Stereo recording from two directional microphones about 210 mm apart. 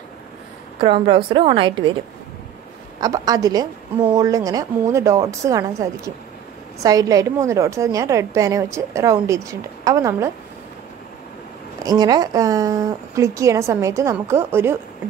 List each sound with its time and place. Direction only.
0.7 s a woman's voice: 25° right (ahead or behind)
3.0 s a woman's voice: 15° right (ahead or behind)
11.8 s a woman's voice: 20° right (ahead or behind)